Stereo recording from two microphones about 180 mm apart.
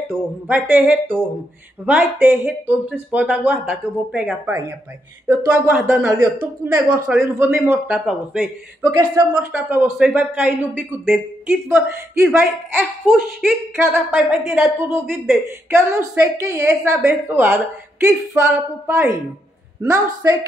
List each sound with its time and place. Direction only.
0.5 s a man's voice: 5° right (ahead or behind)
8.9 s speech: 20° right (ahead or behind)
9.5 s speech: 5° right (ahead or behind)